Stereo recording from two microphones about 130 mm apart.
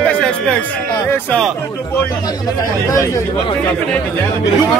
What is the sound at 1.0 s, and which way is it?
Speech, 15° left (ahead or behind).